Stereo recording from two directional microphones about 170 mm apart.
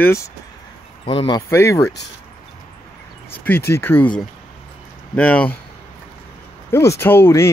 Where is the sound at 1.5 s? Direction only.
15° left (ahead or behind).